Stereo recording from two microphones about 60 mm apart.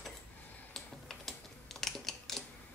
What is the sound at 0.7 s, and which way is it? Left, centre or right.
Typing, centre.